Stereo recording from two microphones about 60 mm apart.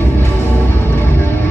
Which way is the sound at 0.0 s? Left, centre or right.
Left.